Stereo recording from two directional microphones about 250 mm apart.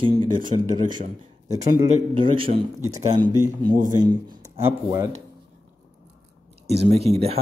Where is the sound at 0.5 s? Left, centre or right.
Centre.